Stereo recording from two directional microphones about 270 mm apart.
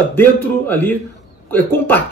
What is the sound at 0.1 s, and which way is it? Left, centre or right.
A man's voice, centre.